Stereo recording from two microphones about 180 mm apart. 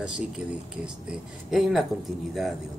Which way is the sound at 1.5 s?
Centre (ahead or behind).